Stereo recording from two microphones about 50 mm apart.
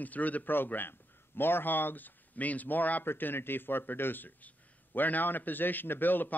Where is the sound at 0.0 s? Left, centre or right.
Left.